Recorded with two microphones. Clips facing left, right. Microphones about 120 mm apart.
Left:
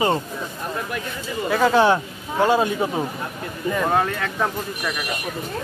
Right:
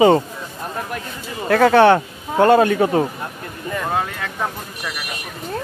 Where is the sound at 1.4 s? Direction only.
65° right (ahead or behind).